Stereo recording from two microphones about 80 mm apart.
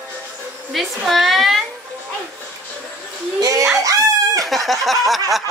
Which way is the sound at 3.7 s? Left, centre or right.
Right.